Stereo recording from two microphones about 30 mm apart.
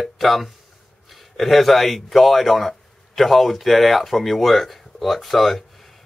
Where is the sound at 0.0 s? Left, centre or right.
Centre.